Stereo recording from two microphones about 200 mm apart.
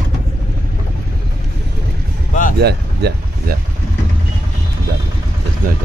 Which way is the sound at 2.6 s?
55° right (ahead or behind).